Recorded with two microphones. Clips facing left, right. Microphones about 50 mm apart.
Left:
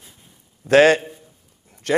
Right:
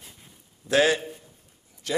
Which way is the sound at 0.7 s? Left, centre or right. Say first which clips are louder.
Left 8 dB; left.